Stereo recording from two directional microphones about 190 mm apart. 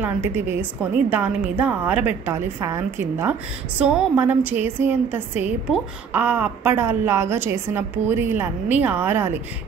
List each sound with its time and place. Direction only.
0.0 s a woman's voice: 10° right (ahead or behind)